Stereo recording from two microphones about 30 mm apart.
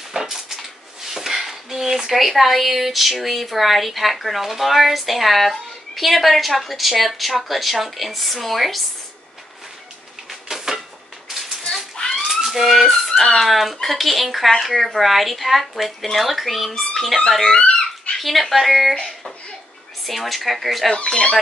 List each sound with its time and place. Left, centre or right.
0.1 s a sound: centre
0.6 s speech: centre
10.5 s a sound: centre
12.0 s a sound: left
12.4 s speech: centre
16.9 s music: centre
17.5 s speech: left
18.2 s speech: centre
20.1 s speech: centre